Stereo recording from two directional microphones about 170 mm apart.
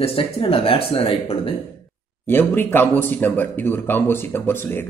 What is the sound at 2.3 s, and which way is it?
Speech, 10° left (ahead or behind).